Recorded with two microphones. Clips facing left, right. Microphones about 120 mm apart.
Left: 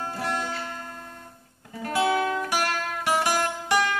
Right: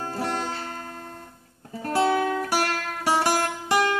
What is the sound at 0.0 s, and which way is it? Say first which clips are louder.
Music: right 1 dB; 35° right (ahead or behind).